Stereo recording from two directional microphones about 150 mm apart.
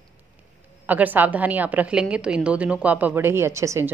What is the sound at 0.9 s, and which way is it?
A woman's voice, 10° right (ahead or behind).